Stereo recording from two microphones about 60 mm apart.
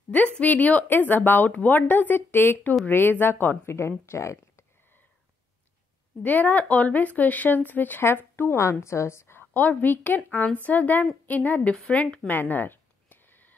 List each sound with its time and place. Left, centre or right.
0.1 s speech: left
3.6 s speech: left
6.2 s speech: left
8.8 s a woman's voice: left
9.4 s speech: left
12.3 s a sound: left